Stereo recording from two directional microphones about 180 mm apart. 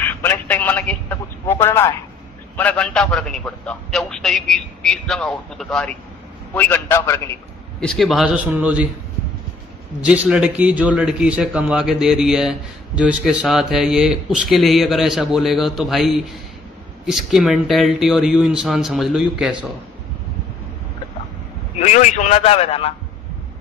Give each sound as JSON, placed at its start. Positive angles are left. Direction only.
{"t": 0.0, "sound": "a sound", "side_deg": 10}
{"t": 2.5, "sound": "a man's voice", "side_deg": 10}
{"t": 7.8, "sound": "a man's voice", "side_deg": 0}
{"t": 10.0, "sound": "a man's voice", "side_deg": -5}
{"t": 21.7, "sound": "a man's voice", "side_deg": 40}